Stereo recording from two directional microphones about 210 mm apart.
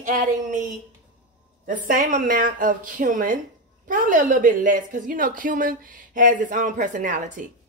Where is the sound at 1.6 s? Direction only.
40° right (ahead or behind).